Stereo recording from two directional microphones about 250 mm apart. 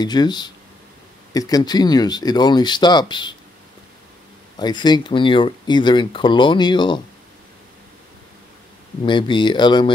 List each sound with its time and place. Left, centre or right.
0.0 s speech: centre
4.6 s speech: centre
9.0 s speech: centre